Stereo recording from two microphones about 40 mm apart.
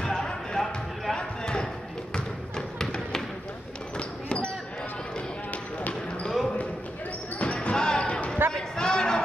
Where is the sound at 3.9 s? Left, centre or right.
Left.